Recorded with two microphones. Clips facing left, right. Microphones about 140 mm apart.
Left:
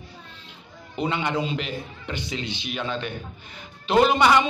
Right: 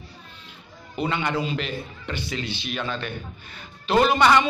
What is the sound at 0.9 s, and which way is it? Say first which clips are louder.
A man's voice: even; 20° left (ahead or behind).